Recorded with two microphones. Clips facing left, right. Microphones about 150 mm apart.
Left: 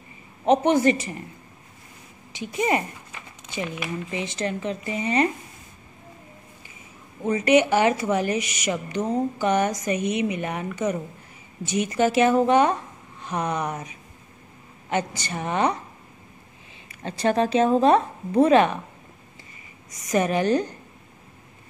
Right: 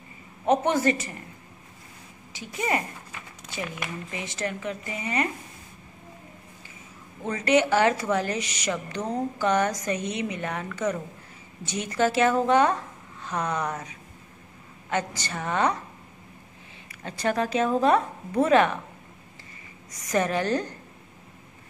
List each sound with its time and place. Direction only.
0.5 s a woman's voice: 20° left (ahead or behind)
2.3 s a woman's voice: 20° left (ahead or behind)
4.1 s a woman's voice: 20° left (ahead or behind)
7.2 s a woman's voice: 15° left (ahead or behind)
17.0 s a woman's voice: 25° left (ahead or behind)
20.1 s a woman's voice: 15° left (ahead or behind)